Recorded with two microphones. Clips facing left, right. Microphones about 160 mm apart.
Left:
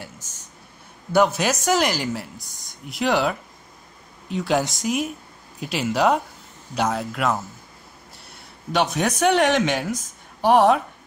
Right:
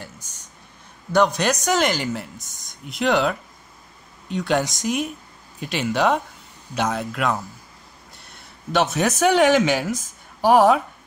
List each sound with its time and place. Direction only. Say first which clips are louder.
0.2 s a sound: left 1 dB; 10° right (ahead or behind)
1.1 s speech: even; 5° left (ahead or behind)
2.3 s speech: even; 20° right (ahead or behind)
2.9 s speech: right 1 dB; centre (ahead or behind)